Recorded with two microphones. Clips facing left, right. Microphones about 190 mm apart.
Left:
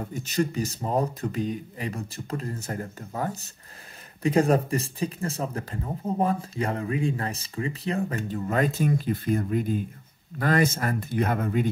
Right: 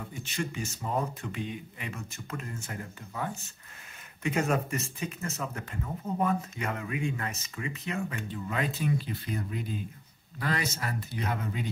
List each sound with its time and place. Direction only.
0.0 s speech: 40° left (ahead or behind)